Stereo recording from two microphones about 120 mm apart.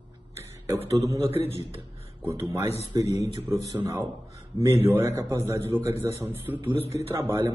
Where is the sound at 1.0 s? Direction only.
25° right (ahead or behind).